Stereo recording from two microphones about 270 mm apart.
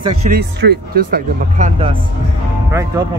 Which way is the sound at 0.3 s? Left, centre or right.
Right.